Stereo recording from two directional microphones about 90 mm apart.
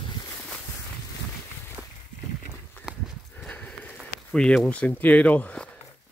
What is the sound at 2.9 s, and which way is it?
Livestock, 10° right (ahead or behind).